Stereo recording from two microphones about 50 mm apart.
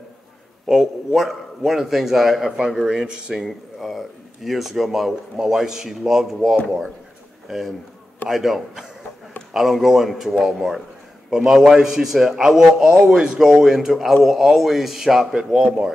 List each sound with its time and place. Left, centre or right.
0.7 s speech: centre
3.4 s a man's voice: centre
15.5 s speech: right